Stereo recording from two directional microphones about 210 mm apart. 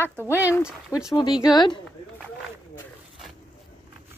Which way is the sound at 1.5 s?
20° left (ahead or behind).